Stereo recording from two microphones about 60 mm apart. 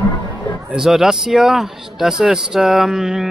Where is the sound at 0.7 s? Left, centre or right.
Centre.